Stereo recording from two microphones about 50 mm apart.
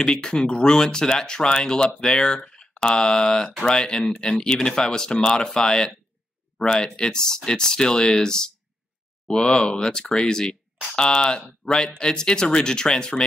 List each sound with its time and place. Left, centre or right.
0.0 s speech: centre